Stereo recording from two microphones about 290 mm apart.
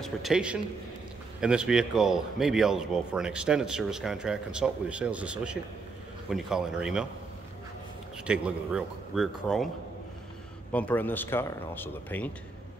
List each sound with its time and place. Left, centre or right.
0.0 s a man's voice: centre
8.2 s a man's voice: centre
10.7 s speech: centre